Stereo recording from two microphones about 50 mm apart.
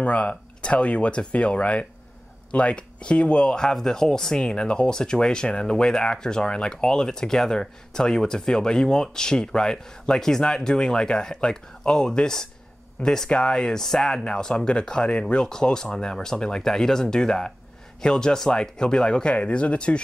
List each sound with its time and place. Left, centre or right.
0.0 s speech: left